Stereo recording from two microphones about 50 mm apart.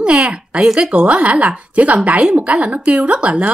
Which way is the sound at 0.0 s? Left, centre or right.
Right.